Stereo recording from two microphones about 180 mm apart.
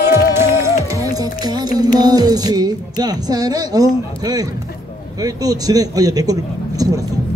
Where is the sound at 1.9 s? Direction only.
20° right (ahead or behind).